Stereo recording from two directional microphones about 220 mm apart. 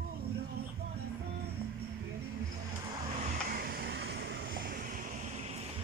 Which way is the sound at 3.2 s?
40° right (ahead or behind).